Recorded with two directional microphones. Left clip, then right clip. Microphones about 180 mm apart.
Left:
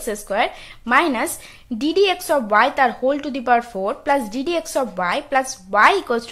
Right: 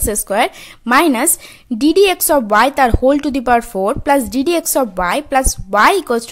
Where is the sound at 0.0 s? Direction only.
40° right (ahead or behind).